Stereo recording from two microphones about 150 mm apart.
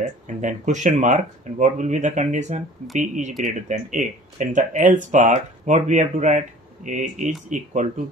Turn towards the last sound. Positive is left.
turn(degrees=-55)  # may be behind; listen again after turning